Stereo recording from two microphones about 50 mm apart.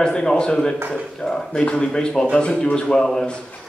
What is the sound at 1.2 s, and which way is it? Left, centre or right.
Speech, left.